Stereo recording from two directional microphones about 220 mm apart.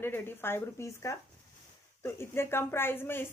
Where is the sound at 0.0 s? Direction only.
10° left (ahead or behind).